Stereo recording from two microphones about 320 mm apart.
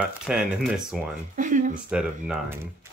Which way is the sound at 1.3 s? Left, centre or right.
Right.